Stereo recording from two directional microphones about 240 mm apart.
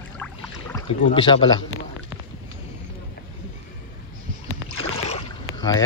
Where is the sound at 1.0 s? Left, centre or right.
Left.